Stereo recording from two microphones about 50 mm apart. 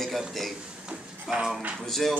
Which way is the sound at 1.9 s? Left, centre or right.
Centre.